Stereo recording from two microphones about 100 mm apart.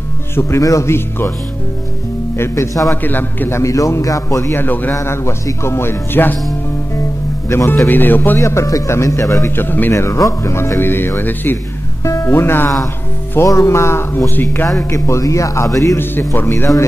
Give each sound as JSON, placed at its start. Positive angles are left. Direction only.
{"t": 0.4, "sound": "speech", "side_deg": 30}
{"t": 2.3, "sound": "speech", "side_deg": 25}
{"t": 3.0, "sound": "speech", "side_deg": 20}
{"t": 7.4, "sound": "speech", "side_deg": 25}
{"t": 8.4, "sound": "a man's voice", "side_deg": 30}
{"t": 9.7, "sound": "a man's voice", "side_deg": 20}
{"t": 16.0, "sound": "speech", "side_deg": 20}